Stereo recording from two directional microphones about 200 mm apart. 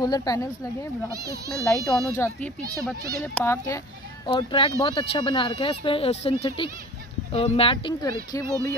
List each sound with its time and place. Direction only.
0.0 s speech: 20° left (ahead or behind)
1.6 s speech: 15° left (ahead or behind)
4.4 s speech: 25° left (ahead or behind)